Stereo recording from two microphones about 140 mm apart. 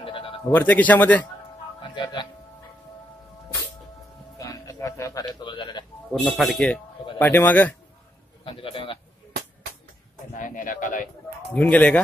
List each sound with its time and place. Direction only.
0.0 s bleat: 40° left (ahead or behind)
0.5 s a man's voice: 10° left (ahead or behind)
1.8 s music: 35° left (ahead or behind)
4.4 s a sound: 25° left (ahead or behind)
6.2 s speech: centre (ahead or behind)
7.2 s a man's voice: 15° left (ahead or behind)
8.5 s a sound: 40° left (ahead or behind)
10.3 s a sound: 70° left (ahead or behind)
11.5 s a man's voice: 10° left (ahead or behind)